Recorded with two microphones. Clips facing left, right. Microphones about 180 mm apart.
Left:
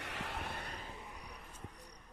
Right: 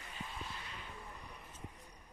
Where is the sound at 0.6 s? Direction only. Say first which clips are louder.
Left 3 dB; 40° left (ahead or behind).